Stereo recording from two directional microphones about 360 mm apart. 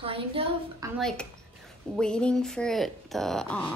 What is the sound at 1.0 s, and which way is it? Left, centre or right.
Speech, centre.